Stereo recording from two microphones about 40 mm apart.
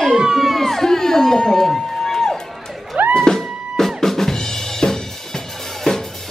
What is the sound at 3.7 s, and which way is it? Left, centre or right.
Drum, centre.